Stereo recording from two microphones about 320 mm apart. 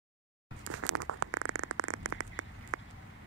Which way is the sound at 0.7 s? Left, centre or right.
Right.